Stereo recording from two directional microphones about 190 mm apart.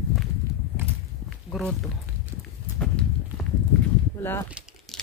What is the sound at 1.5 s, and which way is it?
Speech, centre (ahead or behind).